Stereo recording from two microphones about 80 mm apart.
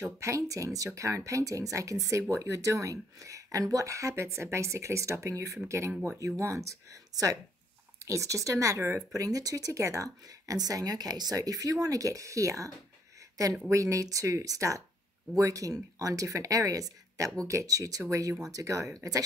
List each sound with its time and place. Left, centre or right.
0.2 s speech: right